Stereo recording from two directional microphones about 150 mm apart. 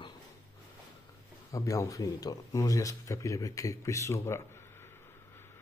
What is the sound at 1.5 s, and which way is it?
Speech, 20° left (ahead or behind).